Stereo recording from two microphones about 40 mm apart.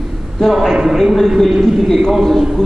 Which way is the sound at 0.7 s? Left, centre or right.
Centre.